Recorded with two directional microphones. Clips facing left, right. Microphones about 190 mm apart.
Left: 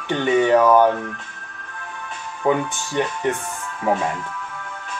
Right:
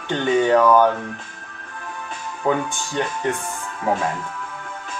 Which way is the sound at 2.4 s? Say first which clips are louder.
Left 2 dB; 15° left (ahead or behind).